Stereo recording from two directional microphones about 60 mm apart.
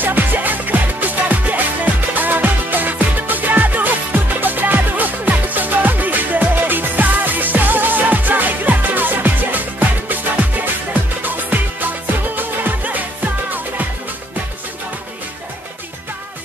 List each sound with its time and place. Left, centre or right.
0.0 s music: right